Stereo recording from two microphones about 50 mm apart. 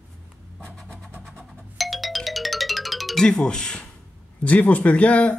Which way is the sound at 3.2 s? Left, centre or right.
Centre.